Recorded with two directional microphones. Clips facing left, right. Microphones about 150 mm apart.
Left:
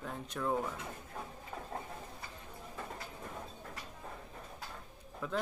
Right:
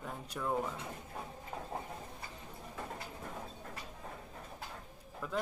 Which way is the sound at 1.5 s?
20° right (ahead or behind).